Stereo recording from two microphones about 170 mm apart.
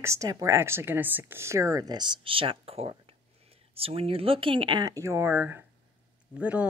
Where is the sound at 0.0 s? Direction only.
15° right (ahead or behind).